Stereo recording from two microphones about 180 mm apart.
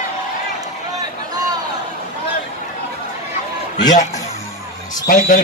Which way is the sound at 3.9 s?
45° left (ahead or behind).